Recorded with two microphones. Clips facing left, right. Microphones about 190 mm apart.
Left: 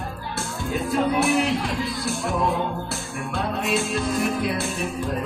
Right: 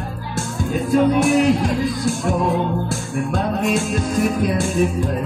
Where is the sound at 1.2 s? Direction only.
45° right (ahead or behind).